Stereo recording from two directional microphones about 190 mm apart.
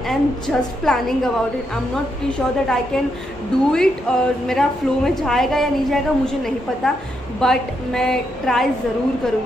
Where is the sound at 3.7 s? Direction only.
5° left (ahead or behind).